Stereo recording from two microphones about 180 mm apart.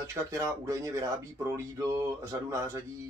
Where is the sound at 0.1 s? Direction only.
15° right (ahead or behind).